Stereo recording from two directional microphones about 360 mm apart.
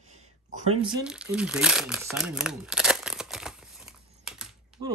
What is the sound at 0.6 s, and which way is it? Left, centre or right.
Speech, centre.